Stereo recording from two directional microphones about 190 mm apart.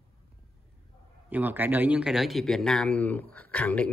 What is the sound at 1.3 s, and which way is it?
Speech, 10° right (ahead or behind).